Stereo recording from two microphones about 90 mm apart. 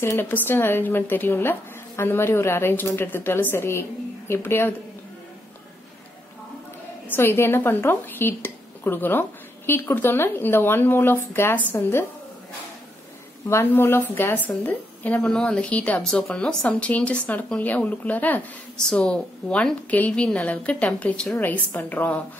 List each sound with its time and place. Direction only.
0.0 s speech: 25° left (ahead or behind)
7.1 s speech: 25° left (ahead or behind)
13.5 s a woman's voice: 25° left (ahead or behind)